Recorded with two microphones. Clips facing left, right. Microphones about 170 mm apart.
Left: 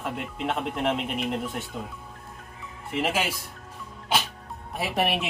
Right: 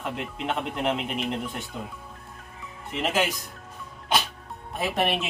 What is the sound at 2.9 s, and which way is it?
Speech, 5° left (ahead or behind).